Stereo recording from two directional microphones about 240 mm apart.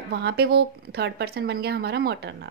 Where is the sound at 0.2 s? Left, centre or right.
Right.